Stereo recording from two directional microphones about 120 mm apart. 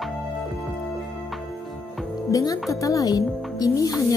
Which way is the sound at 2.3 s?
30° left (ahead or behind).